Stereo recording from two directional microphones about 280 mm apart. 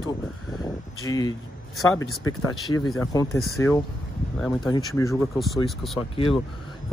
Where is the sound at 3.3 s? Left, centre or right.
Centre.